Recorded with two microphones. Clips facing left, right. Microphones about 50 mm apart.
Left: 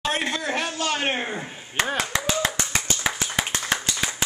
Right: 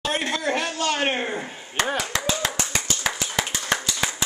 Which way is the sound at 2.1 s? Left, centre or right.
Left.